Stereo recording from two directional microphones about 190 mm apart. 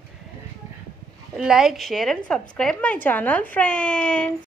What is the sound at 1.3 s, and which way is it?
A woman's voice, centre (ahead or behind).